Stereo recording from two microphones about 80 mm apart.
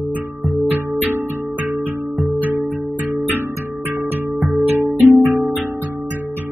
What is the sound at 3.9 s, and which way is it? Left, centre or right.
Music, right.